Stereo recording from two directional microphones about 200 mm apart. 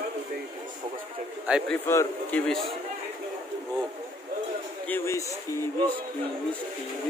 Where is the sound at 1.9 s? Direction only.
10° left (ahead or behind).